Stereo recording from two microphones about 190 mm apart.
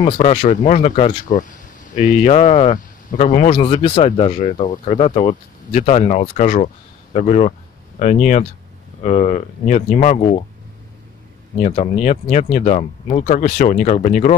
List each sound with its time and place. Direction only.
0.0 s speech: 35° left (ahead or behind)
3.5 s speech: 25° left (ahead or behind)
11.6 s speech: 35° left (ahead or behind)